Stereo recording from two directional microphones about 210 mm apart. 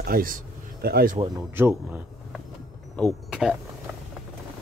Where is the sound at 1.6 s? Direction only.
10° right (ahead or behind).